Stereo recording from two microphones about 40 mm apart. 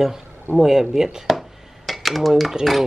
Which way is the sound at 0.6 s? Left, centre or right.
Centre.